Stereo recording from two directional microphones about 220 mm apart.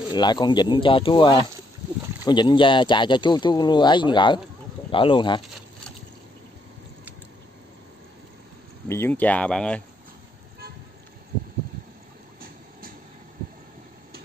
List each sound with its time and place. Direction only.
0.1 s speech: 20° left (ahead or behind)
8.8 s speech: 10° left (ahead or behind)